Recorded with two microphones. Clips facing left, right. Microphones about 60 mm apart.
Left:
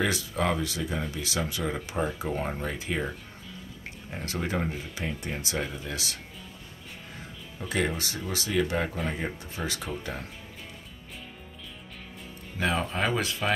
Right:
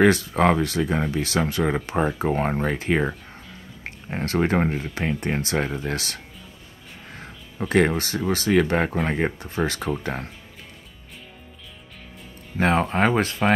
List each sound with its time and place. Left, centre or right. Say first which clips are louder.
0.0 s speech: right 10 dB; right
12.5 s speech: right 8 dB; right